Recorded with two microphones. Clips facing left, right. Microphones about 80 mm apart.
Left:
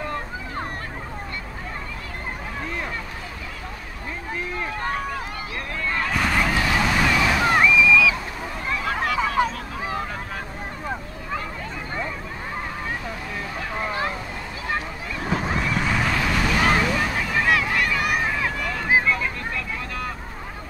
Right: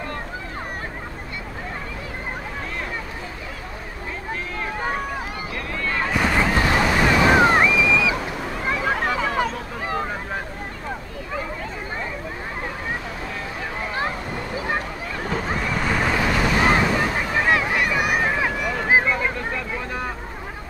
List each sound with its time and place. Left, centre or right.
5.9 s a sound: centre
6.8 s waves: centre
7.1 s waves: right
7.5 s a sound: right
15.2 s waves: centre
16.1 s boat: centre
18.9 s vehicle: right